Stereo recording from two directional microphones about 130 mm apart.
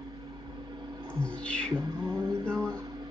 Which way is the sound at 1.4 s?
10° left (ahead or behind).